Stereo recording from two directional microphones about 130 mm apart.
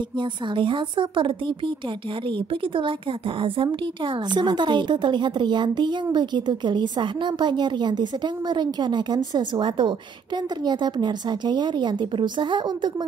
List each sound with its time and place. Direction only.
0.2 s a woman's voice: 40° right (ahead or behind)